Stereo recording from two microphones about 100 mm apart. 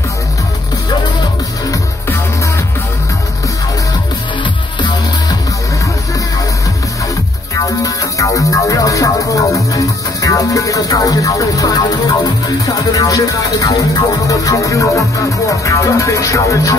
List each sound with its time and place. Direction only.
7.5 s music: 35° left (ahead or behind)